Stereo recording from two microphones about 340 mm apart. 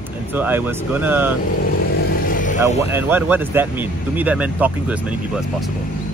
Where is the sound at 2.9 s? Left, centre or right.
Centre.